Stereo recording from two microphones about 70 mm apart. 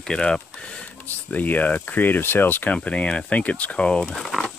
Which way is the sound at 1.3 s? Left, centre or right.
Left.